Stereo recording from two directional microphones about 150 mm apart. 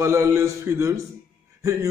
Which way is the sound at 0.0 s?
20° right (ahead or behind).